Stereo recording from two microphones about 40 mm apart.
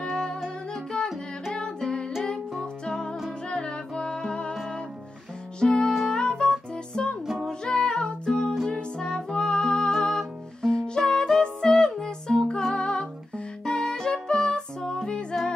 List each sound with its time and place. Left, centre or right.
0.0 s music: centre
3.4 s music: left
5.6 s music: centre